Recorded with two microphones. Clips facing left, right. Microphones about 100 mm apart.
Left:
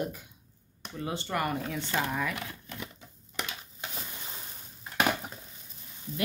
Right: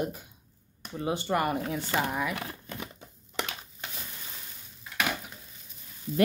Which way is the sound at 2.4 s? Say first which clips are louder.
Right 2 dB; 40° right (ahead or behind).